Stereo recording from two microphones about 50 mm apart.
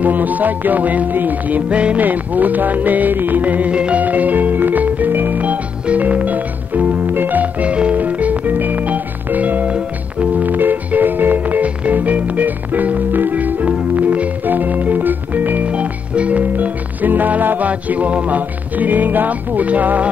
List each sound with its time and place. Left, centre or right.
0.0 s music: right
1.7 s music: right
7.6 s music: right